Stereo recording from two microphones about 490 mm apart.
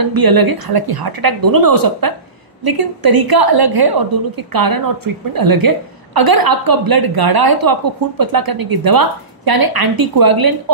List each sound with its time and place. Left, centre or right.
0.0 s a woman's voice: right